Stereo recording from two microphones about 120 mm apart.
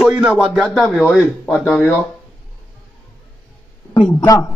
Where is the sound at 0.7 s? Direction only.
5° left (ahead or behind).